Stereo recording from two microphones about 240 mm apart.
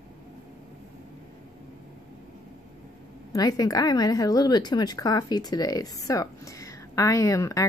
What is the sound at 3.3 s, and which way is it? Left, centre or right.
A woman's voice, centre.